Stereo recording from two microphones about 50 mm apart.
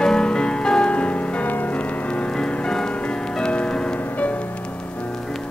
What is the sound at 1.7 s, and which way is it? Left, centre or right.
Music, left.